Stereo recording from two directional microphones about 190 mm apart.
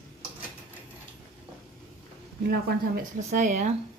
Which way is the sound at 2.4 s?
55° right (ahead or behind).